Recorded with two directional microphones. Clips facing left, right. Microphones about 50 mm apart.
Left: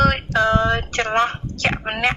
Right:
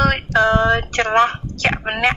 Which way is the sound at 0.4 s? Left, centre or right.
Right.